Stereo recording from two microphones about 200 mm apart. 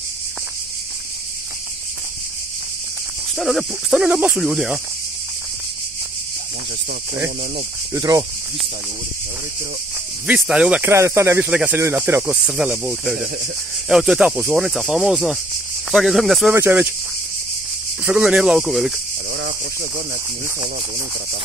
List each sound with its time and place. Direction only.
3.3 s speech: centre (ahead or behind)
7.9 s speech: 15° right (ahead or behind)
10.2 s speech: 5° right (ahead or behind)
18.0 s speech: 5° right (ahead or behind)